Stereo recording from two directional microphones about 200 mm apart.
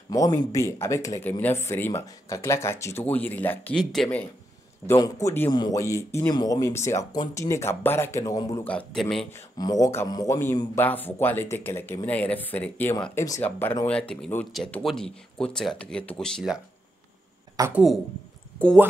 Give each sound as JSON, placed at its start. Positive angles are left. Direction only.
{"t": 0.1, "sound": "speech", "side_deg": 15}
{"t": 4.8, "sound": "speech", "side_deg": 15}
{"t": 8.6, "sound": "speech", "side_deg": 5}
{"t": 9.6, "sound": "speech", "side_deg": 15}
{"t": 17.6, "sound": "speech", "side_deg": -10}